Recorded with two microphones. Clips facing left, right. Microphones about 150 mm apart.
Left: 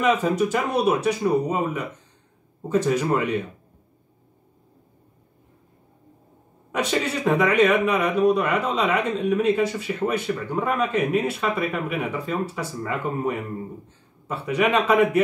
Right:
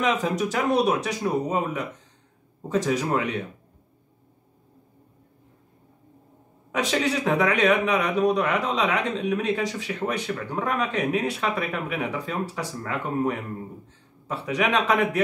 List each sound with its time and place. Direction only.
0.0 s a man's voice: centre (ahead or behind)
6.7 s a man's voice: centre (ahead or behind)